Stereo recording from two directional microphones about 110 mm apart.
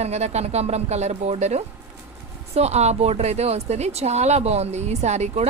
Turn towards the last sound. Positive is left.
turn(degrees=-90)